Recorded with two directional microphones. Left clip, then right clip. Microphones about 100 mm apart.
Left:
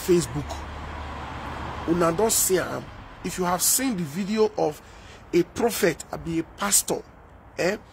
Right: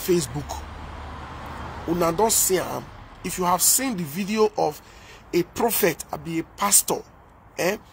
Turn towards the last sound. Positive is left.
turn(degrees=15)  # may be behind; listen again after turning